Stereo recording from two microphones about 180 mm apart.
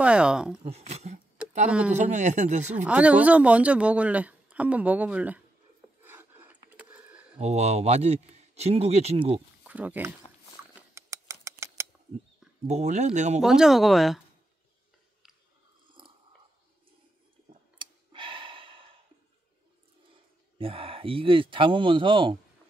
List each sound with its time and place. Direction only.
0.0 s speech: 5° right (ahead or behind)
0.6 s speech: 35° right (ahead or behind)
1.7 s speech: 5° right (ahead or behind)
2.0 s speech: 40° right (ahead or behind)
2.9 s a woman's voice: 5° right (ahead or behind)
6.0 s a sound: 10° right (ahead or behind)
7.3 s speech: 35° right (ahead or behind)
9.7 s speech: 10° right (ahead or behind)
10.7 s a sound: 15° right (ahead or behind)
12.6 s speech: 40° right (ahead or behind)
13.4 s speech: centre (ahead or behind)
17.7 s clicking: 25° right (ahead or behind)
20.5 s speech: 30° right (ahead or behind)